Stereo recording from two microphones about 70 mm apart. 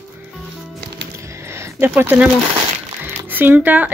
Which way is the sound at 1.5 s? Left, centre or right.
Right.